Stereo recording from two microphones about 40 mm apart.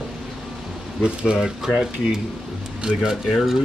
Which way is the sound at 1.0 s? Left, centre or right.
Right.